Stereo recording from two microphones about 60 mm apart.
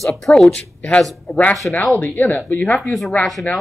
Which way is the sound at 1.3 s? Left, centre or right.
Left.